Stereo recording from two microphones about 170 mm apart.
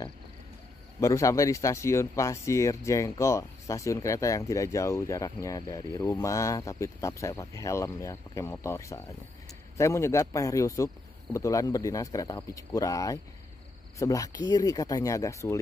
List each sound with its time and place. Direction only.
1.0 s speech: 15° left (ahead or behind)